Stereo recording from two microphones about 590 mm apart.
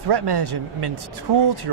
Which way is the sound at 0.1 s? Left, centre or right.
Right.